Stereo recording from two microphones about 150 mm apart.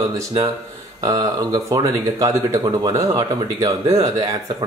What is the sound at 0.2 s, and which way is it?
Speech, 30° right (ahead or behind).